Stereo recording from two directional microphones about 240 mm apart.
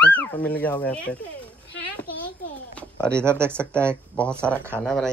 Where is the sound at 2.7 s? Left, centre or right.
Centre.